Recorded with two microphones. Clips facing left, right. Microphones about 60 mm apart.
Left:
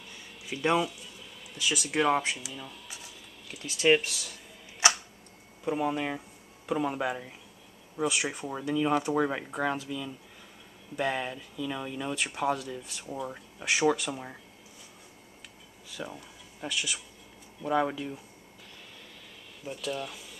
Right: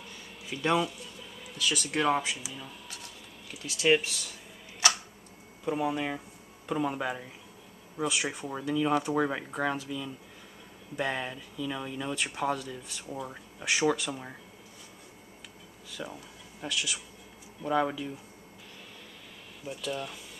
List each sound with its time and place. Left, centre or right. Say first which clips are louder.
0.5 s speech: left 1 dB; centre
4.8 s a sound: left 2 dB; left
5.7 s speech: left 1 dB; centre
15.9 s speech: left 1 dB; centre
19.6 s speech: left 1 dB; centre